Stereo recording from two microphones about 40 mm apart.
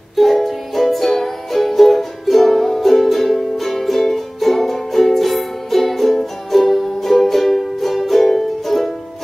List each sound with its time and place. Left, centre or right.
0.1 s music: centre